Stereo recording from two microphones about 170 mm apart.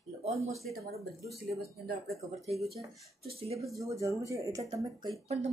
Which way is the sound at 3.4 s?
35° right (ahead or behind).